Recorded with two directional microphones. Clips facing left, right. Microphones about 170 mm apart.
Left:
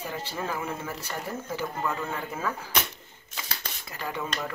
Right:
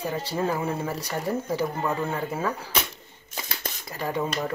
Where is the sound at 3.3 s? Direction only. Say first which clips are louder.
Right 4 dB; 40° right (ahead or behind).